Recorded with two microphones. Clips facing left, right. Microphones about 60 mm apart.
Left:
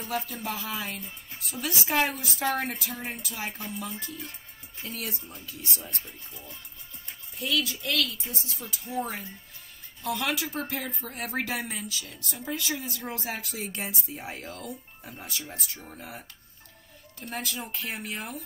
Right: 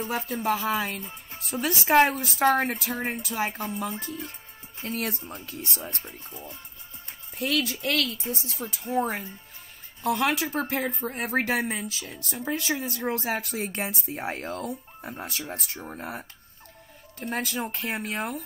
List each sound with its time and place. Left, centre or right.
0.0 s speech: right
7.3 s speech: right
17.3 s speech: right